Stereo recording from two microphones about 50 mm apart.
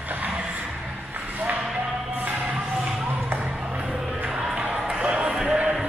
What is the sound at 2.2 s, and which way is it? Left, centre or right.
Music, right.